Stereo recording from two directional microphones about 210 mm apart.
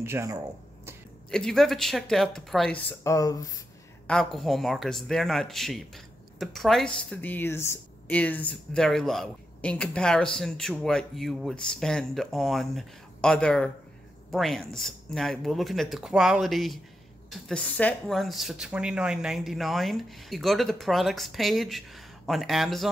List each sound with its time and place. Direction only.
0.0 s speech: 15° right (ahead or behind)
1.3 s speech: centre (ahead or behind)
3.0 s speech: 15° left (ahead or behind)
4.1 s speech: centre (ahead or behind)